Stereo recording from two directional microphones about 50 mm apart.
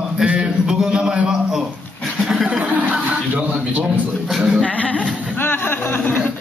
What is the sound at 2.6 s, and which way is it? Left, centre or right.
Speech, right.